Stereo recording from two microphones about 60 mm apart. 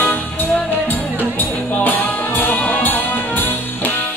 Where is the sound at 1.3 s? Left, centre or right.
Left.